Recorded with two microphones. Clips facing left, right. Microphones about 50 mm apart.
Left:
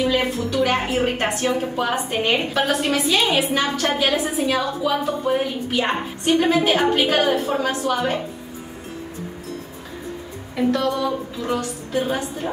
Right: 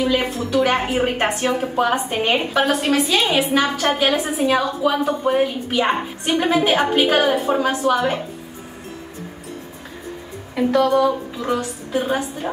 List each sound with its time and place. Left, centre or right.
0.0 s a sound: centre
0.5 s a woman's voice: centre
10.7 s speech: centre
11.4 s a woman's voice: centre